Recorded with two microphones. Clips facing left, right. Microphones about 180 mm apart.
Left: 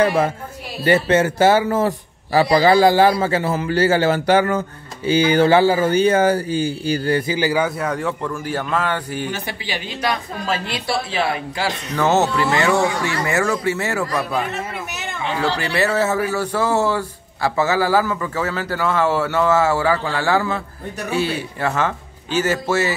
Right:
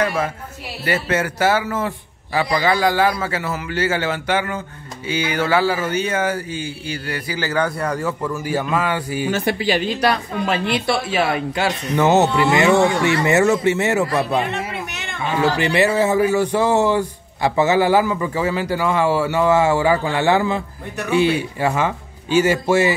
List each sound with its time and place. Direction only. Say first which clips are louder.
0.0 s a man's voice: left 4 dB; 30° left (ahead or behind)
7.3 s a man's voice: left 3 dB; 15° left (ahead or behind)
7.6 s speech: even; centre (ahead or behind)
11.1 s speech: right 2 dB; 20° right (ahead or behind)
15.4 s a man's voice: right 4 dB; 15° right (ahead or behind)